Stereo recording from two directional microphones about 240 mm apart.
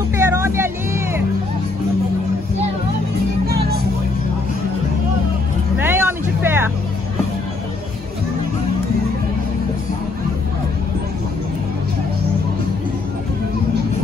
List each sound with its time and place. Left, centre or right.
0.2 s music: centre
3.4 s music: right
5.8 s music: centre